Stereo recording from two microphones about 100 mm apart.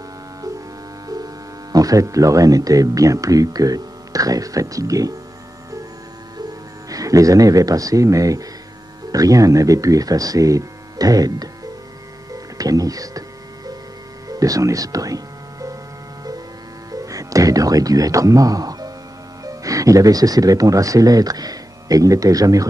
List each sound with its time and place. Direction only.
1.0 s speech: 40° right (ahead or behind)
6.9 s speech: 35° right (ahead or behind)
12.5 s speech: 35° right (ahead or behind)
14.3 s music: 35° right (ahead or behind)
16.9 s music: 35° right (ahead or behind)
19.4 s speech: 35° right (ahead or behind)